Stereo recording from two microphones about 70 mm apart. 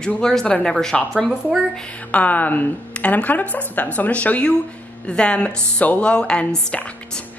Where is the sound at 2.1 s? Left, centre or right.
Left.